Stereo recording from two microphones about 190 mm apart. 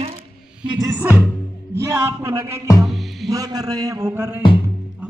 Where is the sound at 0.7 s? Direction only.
20° right (ahead or behind).